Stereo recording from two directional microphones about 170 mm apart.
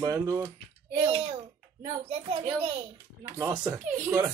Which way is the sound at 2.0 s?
35° right (ahead or behind).